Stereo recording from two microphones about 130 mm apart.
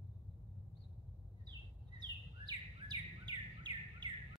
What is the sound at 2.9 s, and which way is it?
Bird, 35° right (ahead or behind).